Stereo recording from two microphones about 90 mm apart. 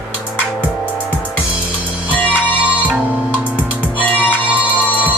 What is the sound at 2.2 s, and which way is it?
Music, 20° left (ahead or behind).